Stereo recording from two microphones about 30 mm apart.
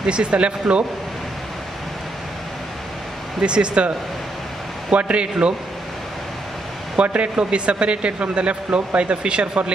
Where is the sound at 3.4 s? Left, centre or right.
Right.